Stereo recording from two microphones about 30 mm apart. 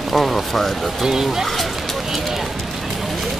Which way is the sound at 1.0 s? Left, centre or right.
Centre.